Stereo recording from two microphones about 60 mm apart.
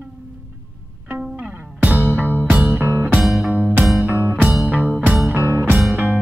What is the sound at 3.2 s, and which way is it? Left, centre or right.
Music, centre.